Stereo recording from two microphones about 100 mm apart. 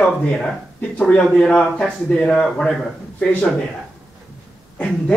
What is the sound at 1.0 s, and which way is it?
A man's voice, 5° left (ahead or behind).